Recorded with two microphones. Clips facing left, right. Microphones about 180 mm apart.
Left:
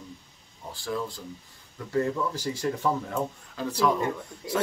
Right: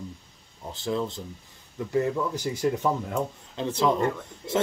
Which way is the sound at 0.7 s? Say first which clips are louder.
Right 3 dB; 20° right (ahead or behind).